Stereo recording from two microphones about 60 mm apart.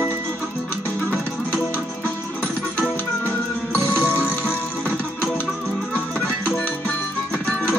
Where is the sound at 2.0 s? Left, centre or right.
Left.